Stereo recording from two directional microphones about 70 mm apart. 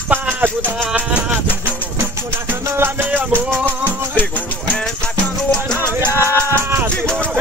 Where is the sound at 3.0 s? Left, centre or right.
Right.